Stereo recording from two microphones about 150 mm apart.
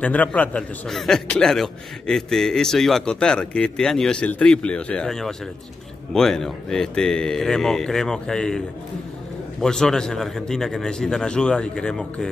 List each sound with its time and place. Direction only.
0.0 s a man's voice: 10° left (ahead or behind)